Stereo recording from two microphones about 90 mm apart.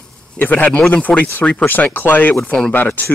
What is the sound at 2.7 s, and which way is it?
Speech, 20° left (ahead or behind).